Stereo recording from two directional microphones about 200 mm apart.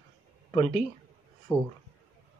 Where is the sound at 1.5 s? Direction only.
15° left (ahead or behind).